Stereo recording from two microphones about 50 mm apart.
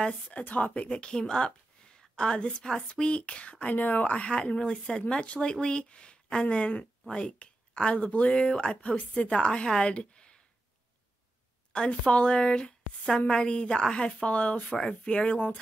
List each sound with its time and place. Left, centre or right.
0.0 s a woman's voice: left
11.7 s speech: centre